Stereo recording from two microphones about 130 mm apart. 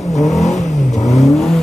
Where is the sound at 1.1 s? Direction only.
Centre (ahead or behind).